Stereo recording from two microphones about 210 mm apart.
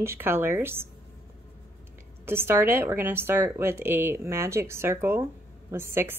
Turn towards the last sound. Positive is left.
turn(degrees=-10)  # may be behind; listen again after turning